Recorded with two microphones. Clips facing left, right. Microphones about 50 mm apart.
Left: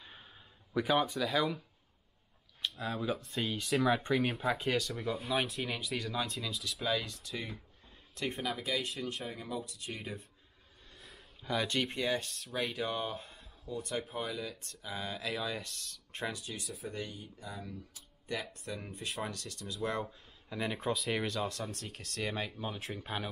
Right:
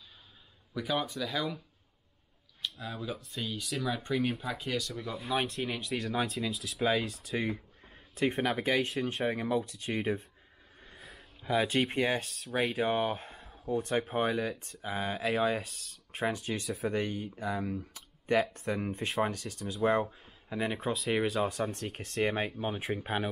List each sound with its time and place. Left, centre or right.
0.7 s speech: centre
2.6 s speech: centre
4.1 s speech: centre
5.3 s speech: centre
7.1 s speech: right
8.4 s speech: right
9.9 s speech: right
11.1 s speech: centre
11.9 s speech: right
15.6 s speech: centre
16.5 s speech: right
19.2 s speech: right
20.1 s speech: centre
21.1 s speech: centre